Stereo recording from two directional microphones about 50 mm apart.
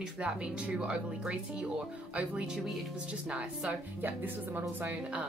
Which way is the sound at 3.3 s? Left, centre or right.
Centre.